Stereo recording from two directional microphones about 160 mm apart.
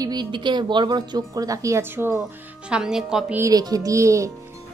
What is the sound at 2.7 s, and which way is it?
Speech, 5° right (ahead or behind).